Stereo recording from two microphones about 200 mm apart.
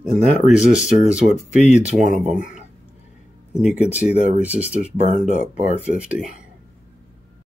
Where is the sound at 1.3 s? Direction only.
35° left (ahead or behind).